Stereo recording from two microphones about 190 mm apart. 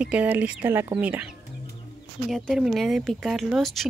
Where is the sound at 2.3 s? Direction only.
Centre (ahead or behind).